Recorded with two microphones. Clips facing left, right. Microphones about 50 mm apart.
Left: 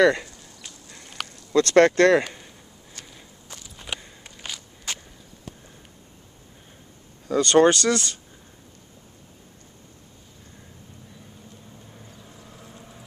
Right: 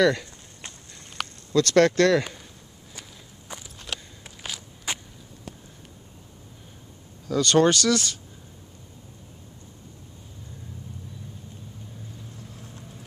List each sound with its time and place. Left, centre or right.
0.0 s speech: centre
1.5 s speech: left
2.9 s walk: centre
3.7 s walk: centre
4.2 s a sound: centre
4.9 s a sound: centre
7.3 s speech: centre
12.4 s vehicle: left